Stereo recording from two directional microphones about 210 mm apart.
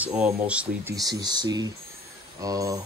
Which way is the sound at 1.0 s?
20° right (ahead or behind).